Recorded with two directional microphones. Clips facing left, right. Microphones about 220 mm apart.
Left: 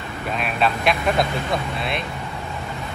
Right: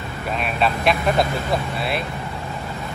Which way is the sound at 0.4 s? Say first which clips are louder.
Even; centre (ahead or behind).